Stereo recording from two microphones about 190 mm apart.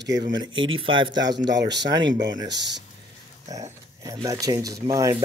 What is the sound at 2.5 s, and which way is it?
Speech, 65° right (ahead or behind).